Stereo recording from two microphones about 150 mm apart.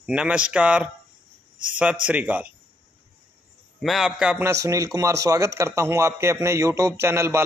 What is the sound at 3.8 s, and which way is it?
Speech, centre (ahead or behind).